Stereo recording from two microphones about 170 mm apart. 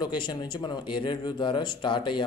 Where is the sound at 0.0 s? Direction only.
25° left (ahead or behind).